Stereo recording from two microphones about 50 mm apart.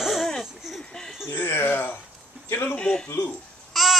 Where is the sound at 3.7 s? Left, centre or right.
Centre.